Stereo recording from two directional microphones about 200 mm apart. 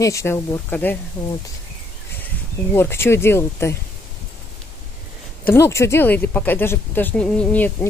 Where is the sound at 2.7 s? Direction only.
10° left (ahead or behind).